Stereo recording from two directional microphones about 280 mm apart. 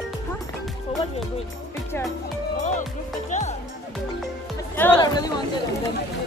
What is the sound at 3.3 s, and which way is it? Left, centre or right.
Music, left.